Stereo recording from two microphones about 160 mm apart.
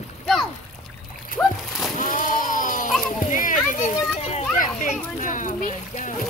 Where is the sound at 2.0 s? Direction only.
55° left (ahead or behind).